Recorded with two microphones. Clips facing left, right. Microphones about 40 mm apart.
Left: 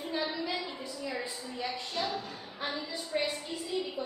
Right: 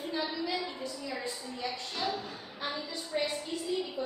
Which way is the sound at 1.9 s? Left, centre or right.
Centre.